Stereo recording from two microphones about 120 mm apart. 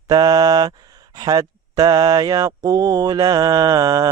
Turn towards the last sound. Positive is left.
turn(degrees=-30)  # may be behind; listen again after turning